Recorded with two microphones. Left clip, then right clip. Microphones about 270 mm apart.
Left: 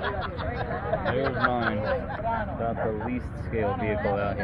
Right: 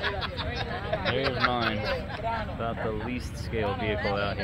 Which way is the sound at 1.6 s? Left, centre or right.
Right.